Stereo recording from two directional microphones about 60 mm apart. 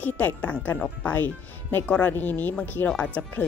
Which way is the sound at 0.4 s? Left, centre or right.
Left.